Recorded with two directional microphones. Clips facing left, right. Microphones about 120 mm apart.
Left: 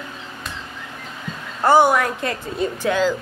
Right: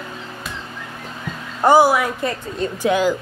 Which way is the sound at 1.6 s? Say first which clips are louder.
Right 1 dB; 10° right (ahead or behind).